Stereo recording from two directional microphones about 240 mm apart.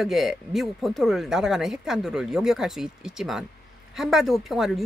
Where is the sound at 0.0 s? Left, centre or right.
Centre.